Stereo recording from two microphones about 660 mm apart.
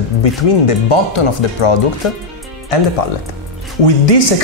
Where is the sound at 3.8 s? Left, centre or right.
Left.